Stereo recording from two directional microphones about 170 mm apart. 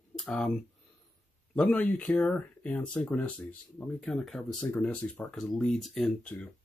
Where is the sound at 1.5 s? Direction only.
5° left (ahead or behind).